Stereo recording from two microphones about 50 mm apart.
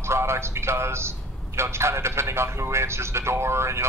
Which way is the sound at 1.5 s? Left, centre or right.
Right.